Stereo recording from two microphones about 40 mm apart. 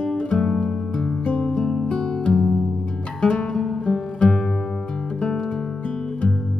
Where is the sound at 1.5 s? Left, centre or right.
Centre.